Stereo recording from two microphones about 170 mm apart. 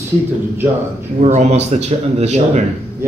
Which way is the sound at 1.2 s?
40° right (ahead or behind).